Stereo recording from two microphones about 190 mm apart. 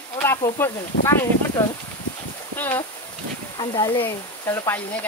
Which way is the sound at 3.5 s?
25° left (ahead or behind).